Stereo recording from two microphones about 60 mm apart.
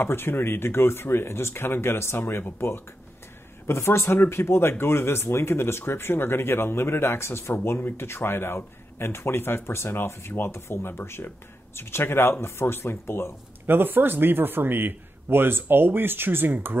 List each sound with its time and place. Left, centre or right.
0.0 s speech: left
13.7 s a man's voice: right